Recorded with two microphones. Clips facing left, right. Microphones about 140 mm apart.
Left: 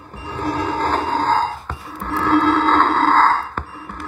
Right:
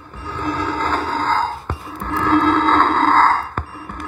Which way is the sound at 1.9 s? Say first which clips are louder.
Even; 5° left (ahead or behind).